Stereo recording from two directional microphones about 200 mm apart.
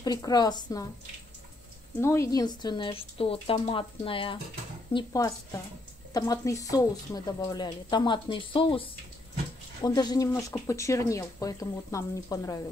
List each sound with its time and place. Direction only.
0.0 s speech: 20° left (ahead or behind)
2.0 s speech: 15° left (ahead or behind)